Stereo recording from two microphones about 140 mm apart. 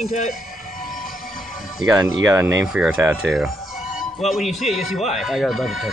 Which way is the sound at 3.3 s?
Centre (ahead or behind).